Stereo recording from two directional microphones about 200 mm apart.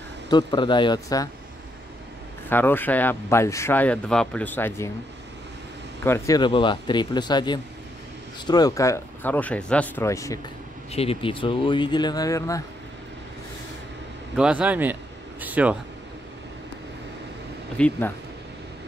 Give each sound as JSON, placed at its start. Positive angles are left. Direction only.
{"t": 0.3, "sound": "speech", "side_deg": 20}
{"t": 2.5, "sound": "speech", "side_deg": 10}
{"t": 6.0, "sound": "speech", "side_deg": 15}
{"t": 10.9, "sound": "speech", "side_deg": 30}
{"t": 14.3, "sound": "speech", "side_deg": -5}
{"t": 17.7, "sound": "speech", "side_deg": 5}